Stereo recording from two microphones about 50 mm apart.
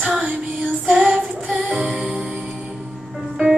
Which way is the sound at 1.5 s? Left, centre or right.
Right.